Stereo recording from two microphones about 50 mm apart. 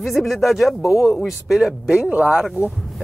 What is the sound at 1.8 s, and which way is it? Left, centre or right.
Speech, right.